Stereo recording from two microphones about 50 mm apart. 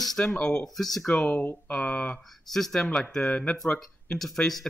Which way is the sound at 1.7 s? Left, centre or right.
Left.